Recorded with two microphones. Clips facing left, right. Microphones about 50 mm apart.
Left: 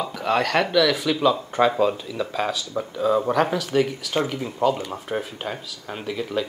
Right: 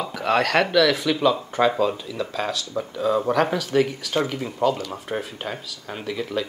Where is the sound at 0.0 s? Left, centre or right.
Centre.